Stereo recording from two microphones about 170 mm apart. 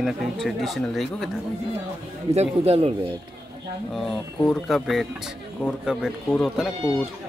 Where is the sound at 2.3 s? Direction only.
40° right (ahead or behind).